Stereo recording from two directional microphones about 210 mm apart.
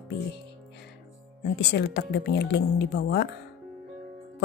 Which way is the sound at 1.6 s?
55° left (ahead or behind).